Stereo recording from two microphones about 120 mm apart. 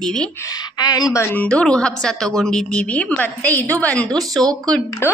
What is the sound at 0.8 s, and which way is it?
A woman's voice, 35° left (ahead or behind).